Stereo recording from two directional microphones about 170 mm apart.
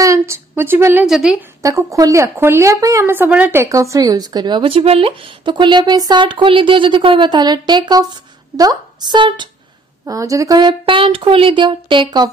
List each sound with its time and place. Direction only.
0.0 s a woman's voice: 15° right (ahead or behind)
1.0 s a woman's voice: centre (ahead or behind)
1.6 s speech: 20° right (ahead or behind)